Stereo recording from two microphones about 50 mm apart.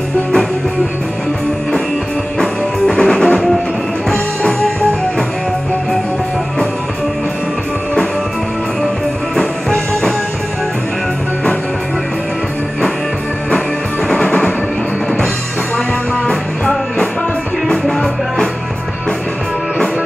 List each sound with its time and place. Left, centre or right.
3.0 s music: centre
9.3 s music: centre
14.1 s music: centre
17.8 s music: centre